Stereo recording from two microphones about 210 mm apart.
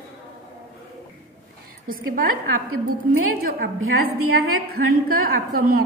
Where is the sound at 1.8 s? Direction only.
45° right (ahead or behind).